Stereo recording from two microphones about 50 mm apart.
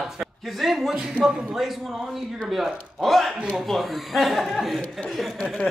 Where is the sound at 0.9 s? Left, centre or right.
Right.